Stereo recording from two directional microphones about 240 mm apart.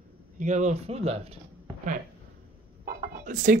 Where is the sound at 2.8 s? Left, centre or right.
Right.